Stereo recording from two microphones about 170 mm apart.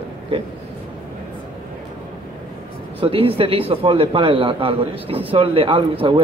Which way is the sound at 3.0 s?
35° right (ahead or behind).